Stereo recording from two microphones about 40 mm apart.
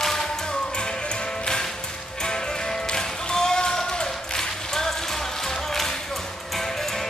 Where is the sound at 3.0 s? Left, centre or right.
Centre.